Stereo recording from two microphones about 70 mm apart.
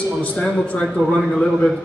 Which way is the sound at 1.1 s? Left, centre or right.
Centre.